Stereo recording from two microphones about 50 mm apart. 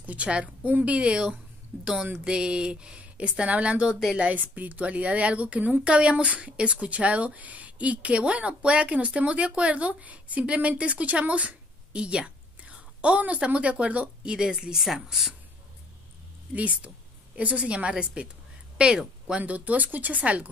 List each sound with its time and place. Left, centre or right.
0.0 s a woman's voice: right
1.7 s speech: right
2.2 s speech: centre
4.3 s speech: right
14.3 s speech: centre
16.5 s speech: right
19.4 s speech: right